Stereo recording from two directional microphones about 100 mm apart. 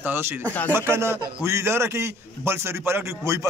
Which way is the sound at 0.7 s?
25° right (ahead or behind).